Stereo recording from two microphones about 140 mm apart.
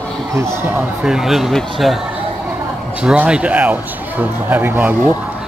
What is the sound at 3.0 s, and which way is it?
A man's voice, 5° right (ahead or behind).